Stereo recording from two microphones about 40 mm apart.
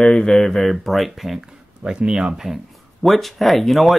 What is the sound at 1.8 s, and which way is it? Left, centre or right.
Speech, centre.